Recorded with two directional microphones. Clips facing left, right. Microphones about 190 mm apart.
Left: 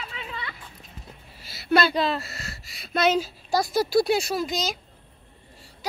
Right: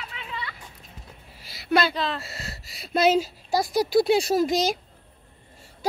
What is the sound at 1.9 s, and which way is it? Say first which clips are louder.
Speech: left 4 dB; 10° left (ahead or behind).